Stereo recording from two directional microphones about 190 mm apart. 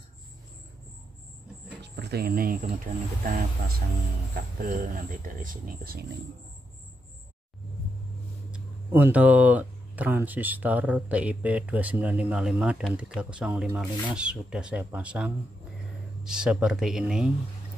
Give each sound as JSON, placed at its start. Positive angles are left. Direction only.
{"t": 1.8, "sound": "a sound", "side_deg": -60}
{"t": 2.9, "sound": "speech", "side_deg": -45}
{"t": 8.5, "sound": "speech", "side_deg": -10}